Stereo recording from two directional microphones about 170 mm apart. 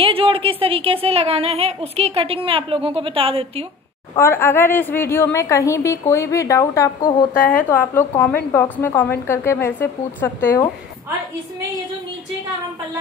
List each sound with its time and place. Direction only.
0.0 s speech: 30° right (ahead or behind)
4.2 s a woman's voice: 15° left (ahead or behind)
7.3 s a woman's voice: 55° left (ahead or behind)
7.7 s a woman's voice: 10° left (ahead or behind)